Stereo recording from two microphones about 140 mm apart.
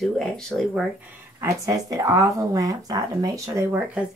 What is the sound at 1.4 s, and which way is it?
Speech, 25° right (ahead or behind).